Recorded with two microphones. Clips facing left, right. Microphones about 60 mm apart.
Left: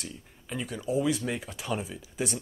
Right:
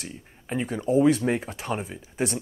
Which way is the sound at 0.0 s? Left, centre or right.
Right.